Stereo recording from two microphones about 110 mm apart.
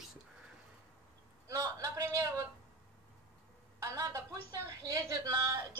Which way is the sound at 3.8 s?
30° right (ahead or behind).